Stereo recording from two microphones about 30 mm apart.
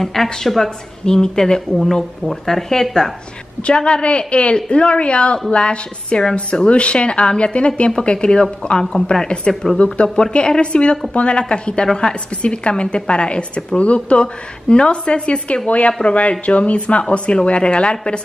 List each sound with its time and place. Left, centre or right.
0.0 s a woman's voice: centre
1.0 s a woman's voice: left
3.6 s a woman's voice: left
9.5 s a woman's voice: centre
10.0 s a woman's voice: left
10.5 s a woman's voice: left
11.9 s a woman's voice: left
12.4 s a woman's voice: left